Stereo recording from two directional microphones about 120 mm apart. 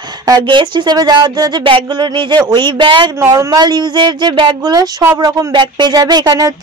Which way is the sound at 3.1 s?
25° right (ahead or behind).